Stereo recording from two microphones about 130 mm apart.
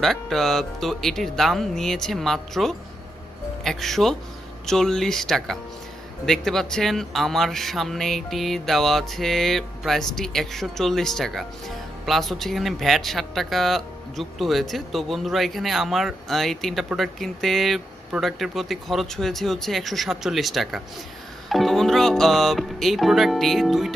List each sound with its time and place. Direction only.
0.0 s speech: centre (ahead or behind)